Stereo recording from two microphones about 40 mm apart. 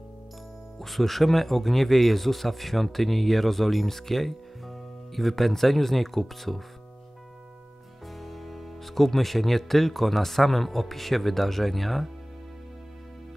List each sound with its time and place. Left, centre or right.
0.7 s speech: centre
8.1 s speech: centre